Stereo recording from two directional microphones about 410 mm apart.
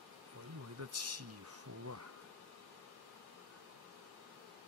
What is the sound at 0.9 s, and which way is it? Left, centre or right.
Speech, right.